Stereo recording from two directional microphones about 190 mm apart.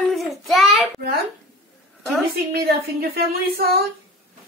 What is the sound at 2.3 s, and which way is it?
A woman's voice, 55° right (ahead or behind).